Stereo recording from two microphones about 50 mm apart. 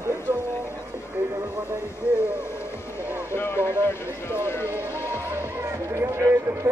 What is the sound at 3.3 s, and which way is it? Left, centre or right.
Speech, left.